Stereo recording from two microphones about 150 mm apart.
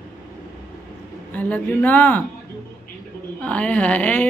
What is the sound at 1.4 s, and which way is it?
Speech, 10° left (ahead or behind).